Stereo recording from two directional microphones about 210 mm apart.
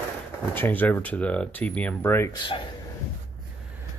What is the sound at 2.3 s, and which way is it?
Speech, 20° left (ahead or behind).